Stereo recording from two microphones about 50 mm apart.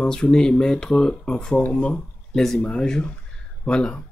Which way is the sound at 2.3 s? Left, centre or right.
Centre.